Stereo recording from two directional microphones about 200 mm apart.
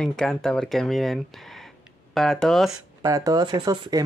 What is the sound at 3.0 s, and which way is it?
Speech, 15° right (ahead or behind).